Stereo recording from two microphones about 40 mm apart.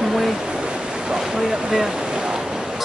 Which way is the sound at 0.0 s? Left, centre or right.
Centre.